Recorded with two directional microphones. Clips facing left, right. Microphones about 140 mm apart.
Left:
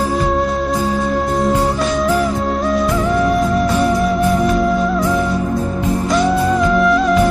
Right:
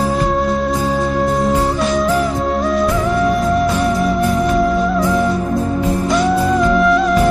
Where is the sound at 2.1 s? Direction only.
Centre (ahead or behind).